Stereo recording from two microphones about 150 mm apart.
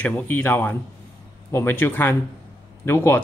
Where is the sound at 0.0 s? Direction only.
10° left (ahead or behind).